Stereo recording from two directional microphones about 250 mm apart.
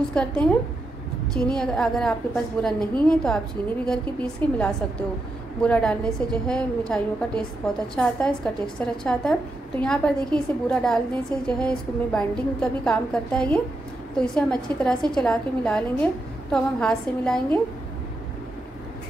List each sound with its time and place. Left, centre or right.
0.1 s a woman's voice: centre